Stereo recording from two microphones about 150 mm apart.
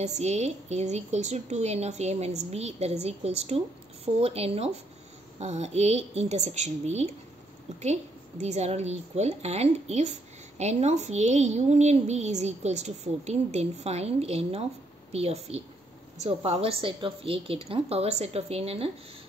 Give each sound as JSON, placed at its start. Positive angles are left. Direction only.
{"t": 0.0, "sound": "a woman's voice", "side_deg": -50}